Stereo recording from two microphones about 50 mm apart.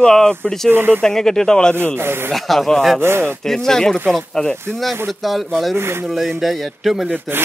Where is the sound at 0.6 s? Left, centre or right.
Right.